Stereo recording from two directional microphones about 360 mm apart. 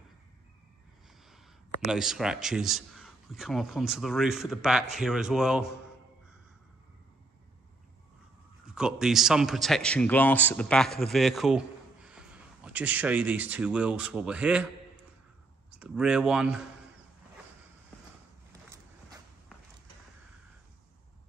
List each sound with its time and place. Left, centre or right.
1.9 s a man's voice: centre
8.6 s a man's voice: centre
15.7 s a man's voice: centre
18.5 s a sound: centre